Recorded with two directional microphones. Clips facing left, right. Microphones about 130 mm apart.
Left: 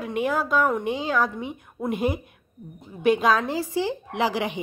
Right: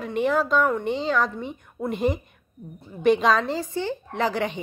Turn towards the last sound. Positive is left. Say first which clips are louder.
# even
turn(degrees=10)  # may be behind; listen again after turning